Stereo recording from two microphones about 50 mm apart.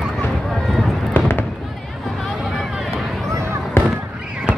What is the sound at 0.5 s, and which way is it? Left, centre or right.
Run, centre.